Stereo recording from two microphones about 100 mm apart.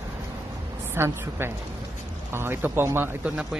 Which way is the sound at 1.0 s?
25° right (ahead or behind).